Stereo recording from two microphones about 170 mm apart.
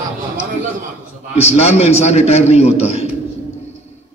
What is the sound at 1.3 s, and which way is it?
A man's voice, 40° left (ahead or behind).